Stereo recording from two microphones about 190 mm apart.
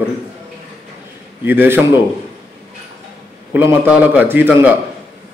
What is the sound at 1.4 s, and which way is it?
Speech, 10° right (ahead or behind).